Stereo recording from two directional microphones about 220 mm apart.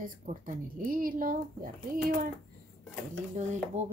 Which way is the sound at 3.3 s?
30° right (ahead or behind).